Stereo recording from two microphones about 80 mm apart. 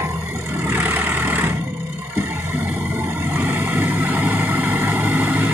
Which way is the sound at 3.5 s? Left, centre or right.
Right.